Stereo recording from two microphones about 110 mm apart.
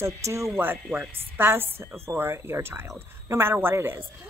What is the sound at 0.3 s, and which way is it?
Speech, 20° right (ahead or behind).